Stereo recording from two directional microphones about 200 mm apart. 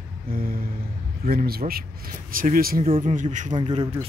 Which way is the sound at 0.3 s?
45° right (ahead or behind).